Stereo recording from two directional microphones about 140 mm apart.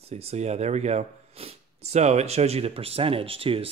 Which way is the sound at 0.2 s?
50° right (ahead or behind).